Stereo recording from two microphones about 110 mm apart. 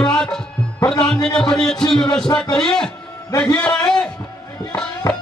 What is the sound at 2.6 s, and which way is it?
Music, 5° left (ahead or behind).